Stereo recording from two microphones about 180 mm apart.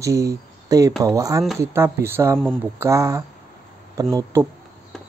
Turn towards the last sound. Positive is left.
turn(degrees=-20)  # may be behind; listen again after turning